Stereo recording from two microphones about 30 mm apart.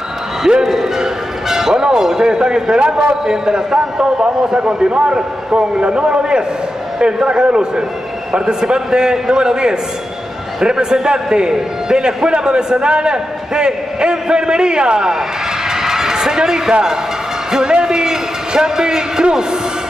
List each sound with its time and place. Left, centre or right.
0.7 s a man's voice: centre; by 3.2 s right
3.3 s a man's voice: right
4.8 s a man's voice: right
15.7 s music: centre
17.5 s speech: right
17.8 s a sound: right